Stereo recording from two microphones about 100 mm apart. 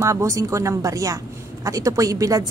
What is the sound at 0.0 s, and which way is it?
Speech, 30° right (ahead or behind).